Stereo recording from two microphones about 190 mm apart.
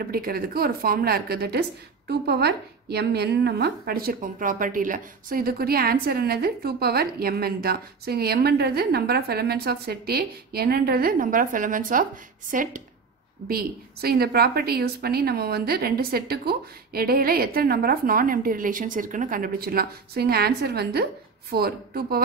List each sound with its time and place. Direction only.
0.0 s a woman's voice: 50° right (ahead or behind)